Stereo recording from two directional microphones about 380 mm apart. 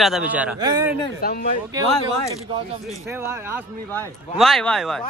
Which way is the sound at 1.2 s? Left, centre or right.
Left.